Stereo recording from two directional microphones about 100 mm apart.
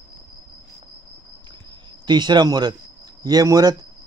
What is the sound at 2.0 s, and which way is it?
Speech, 45° right (ahead or behind).